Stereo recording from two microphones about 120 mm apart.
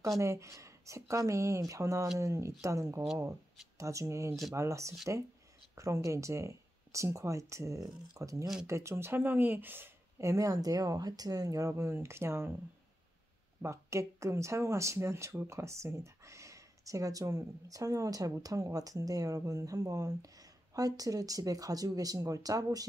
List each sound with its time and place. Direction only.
0.2 s speech: 25° right (ahead or behind)
13.6 s speech: 25° right (ahead or behind)